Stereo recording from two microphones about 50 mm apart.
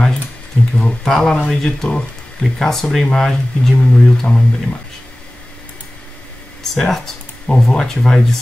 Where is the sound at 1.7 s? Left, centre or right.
Centre.